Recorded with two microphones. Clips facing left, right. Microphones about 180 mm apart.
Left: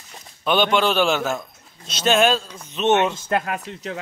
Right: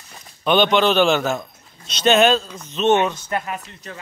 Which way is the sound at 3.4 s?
70° left (ahead or behind).